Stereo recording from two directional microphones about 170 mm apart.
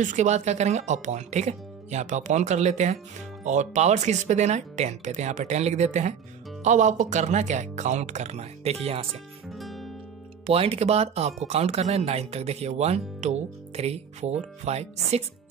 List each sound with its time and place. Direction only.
0.0 s speech: 45° right (ahead or behind)
9.5 s music: centre (ahead or behind)
10.4 s speech: 35° right (ahead or behind)